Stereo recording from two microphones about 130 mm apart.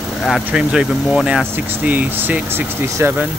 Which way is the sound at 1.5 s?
15° right (ahead or behind).